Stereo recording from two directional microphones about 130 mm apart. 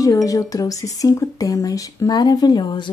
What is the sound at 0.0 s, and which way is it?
Speech, 25° left (ahead or behind).